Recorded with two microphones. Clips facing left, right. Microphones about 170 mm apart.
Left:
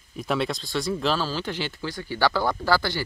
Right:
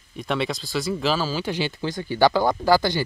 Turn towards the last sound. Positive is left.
turn(degrees=-15)  # may be behind; listen again after turning